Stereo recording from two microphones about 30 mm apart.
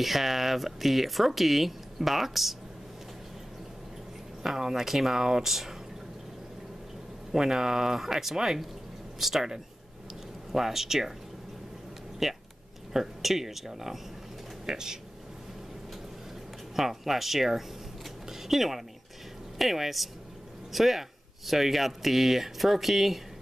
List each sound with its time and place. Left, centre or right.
0.0 s speech: centre
4.6 s speech: centre
7.3 s speech: centre
12.2 s speech: centre
14.7 s speech: right
16.7 s speech: centre